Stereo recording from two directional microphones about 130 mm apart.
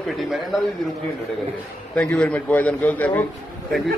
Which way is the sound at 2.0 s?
10° left (ahead or behind).